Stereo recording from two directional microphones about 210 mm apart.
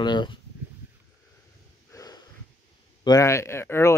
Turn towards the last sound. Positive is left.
turn(degrees=10)  # may be behind; listen again after turning